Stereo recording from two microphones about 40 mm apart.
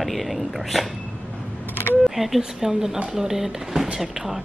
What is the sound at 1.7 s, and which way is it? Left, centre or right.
Camera, left.